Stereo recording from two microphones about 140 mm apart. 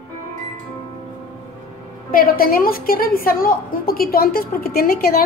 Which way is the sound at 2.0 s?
90° left.